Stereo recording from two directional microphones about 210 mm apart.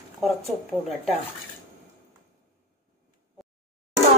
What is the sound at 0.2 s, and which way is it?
Speech, centre (ahead or behind).